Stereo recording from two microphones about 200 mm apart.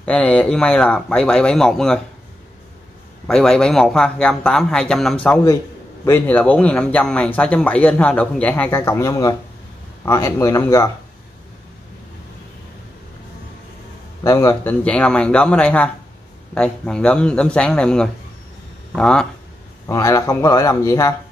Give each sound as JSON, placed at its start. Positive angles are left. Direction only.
{"t": 0.0, "sound": "speech", "side_deg": 5}
{"t": 3.3, "sound": "speech", "side_deg": 5}
{"t": 14.2, "sound": "speech", "side_deg": 15}
{"t": 19.9, "sound": "speech", "side_deg": 15}